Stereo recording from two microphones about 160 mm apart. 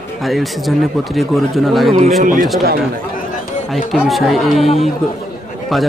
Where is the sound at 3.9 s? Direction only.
Centre (ahead or behind).